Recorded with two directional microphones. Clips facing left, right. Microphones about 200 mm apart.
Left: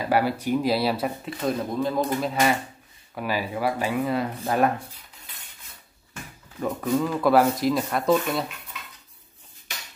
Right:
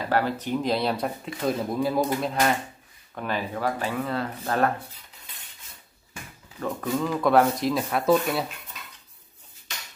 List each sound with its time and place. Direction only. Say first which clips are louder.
0.0 s speech: left 2 dB; 10° left (ahead or behind)
6.6 s speech: left 3 dB; 10° left (ahead or behind)